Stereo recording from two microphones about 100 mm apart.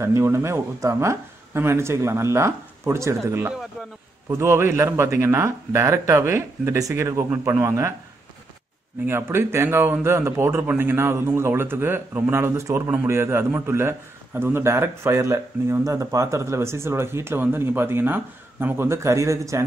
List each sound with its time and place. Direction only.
0.0 s a man's voice: 30° right (ahead or behind)
9.0 s a man's voice: 25° right (ahead or behind)